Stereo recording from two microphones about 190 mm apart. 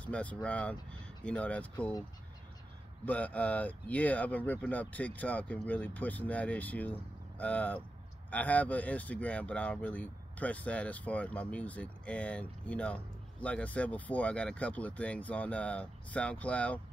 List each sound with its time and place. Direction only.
0.0 s speech: 5° left (ahead or behind)
3.1 s speech: 10° left (ahead or behind)